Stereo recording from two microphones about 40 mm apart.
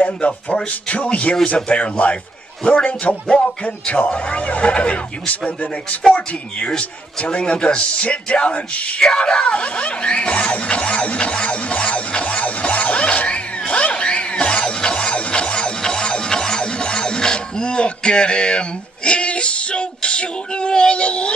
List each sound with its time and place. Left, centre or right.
0.0 s speech: left
9.0 s speech: centre
11.5 s music: left